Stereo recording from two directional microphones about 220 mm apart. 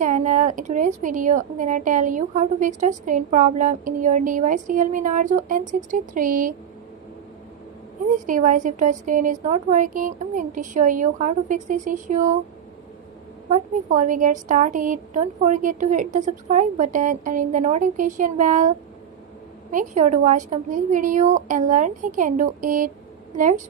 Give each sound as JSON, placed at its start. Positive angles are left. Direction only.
{"t": 0.0, "sound": "a woman's voice", "side_deg": -35}
{"t": 8.3, "sound": "a woman's voice", "side_deg": -35}
{"t": 13.5, "sound": "a woman's voice", "side_deg": -35}
{"t": 19.7, "sound": "a woman's voice", "side_deg": -35}